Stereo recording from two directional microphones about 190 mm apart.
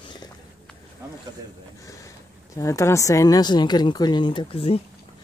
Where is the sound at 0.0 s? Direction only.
25° left (ahead or behind).